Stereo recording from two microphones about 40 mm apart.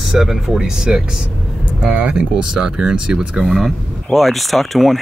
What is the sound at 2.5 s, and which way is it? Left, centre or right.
Speech, centre.